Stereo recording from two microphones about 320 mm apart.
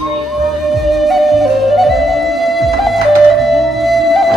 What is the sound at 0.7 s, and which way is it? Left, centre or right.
Flute, centre.